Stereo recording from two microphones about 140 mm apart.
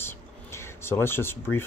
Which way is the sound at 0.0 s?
15° left (ahead or behind).